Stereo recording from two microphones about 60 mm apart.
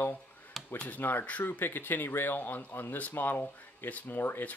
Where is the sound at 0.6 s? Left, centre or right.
Centre.